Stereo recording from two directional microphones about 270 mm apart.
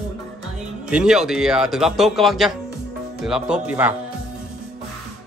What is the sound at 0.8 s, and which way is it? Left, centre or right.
A man's voice, centre.